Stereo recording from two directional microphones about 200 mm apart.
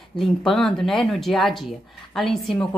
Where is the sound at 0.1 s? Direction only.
Centre (ahead or behind).